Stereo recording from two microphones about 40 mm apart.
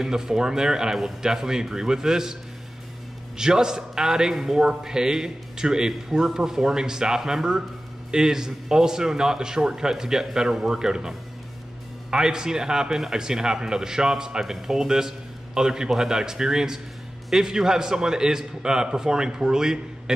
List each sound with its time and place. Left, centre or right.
0.0 s a man's voice: centre
3.3 s a man's voice: centre